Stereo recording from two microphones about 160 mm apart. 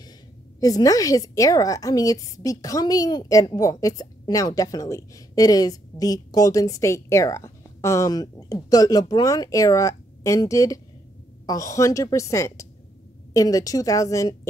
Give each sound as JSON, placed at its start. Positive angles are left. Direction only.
{"t": 0.6, "sound": "a woman's voice", "side_deg": 20}